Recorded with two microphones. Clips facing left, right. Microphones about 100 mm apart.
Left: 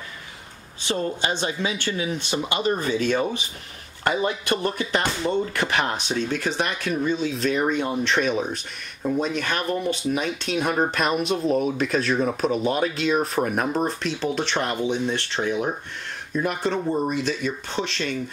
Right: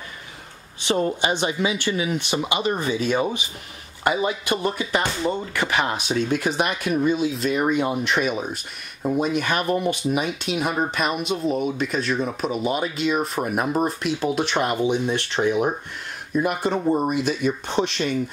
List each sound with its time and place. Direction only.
0.8 s speech: 20° right (ahead or behind)